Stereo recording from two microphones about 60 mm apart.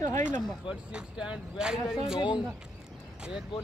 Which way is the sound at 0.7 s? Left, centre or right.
Centre.